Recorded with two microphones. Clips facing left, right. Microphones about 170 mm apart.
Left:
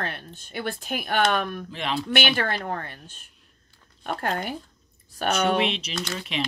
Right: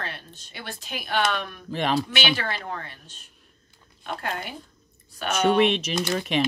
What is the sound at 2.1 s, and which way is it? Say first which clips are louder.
Speech: left 3 dB; 50° left (ahead or behind).